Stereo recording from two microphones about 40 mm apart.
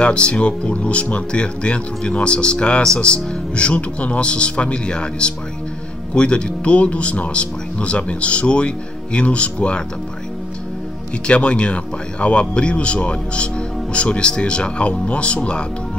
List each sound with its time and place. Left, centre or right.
0.0 s speech: left
11.2 s speech: left